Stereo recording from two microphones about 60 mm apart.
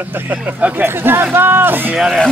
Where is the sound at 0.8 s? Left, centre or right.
Right.